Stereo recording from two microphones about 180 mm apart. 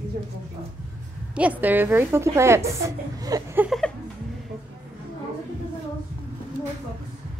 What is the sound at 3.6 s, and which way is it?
Music, centre (ahead or behind).